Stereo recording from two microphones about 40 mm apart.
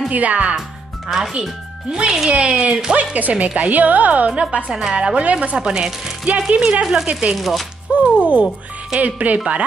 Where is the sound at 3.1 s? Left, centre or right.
Right.